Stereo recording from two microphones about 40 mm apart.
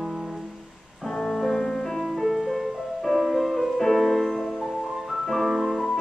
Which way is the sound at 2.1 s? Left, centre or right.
Centre.